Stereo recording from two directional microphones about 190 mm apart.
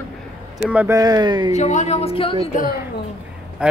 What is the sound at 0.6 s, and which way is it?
Speech, 10° right (ahead or behind).